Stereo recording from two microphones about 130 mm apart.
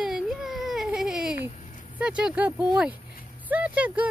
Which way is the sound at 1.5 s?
75° left (ahead or behind).